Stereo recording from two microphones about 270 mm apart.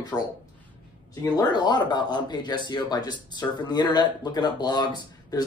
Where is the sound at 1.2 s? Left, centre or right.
Centre.